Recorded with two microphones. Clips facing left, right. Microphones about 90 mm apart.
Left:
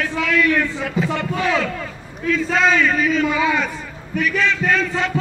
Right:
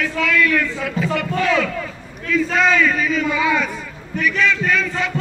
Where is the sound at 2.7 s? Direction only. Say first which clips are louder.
Even; 30° left (ahead or behind).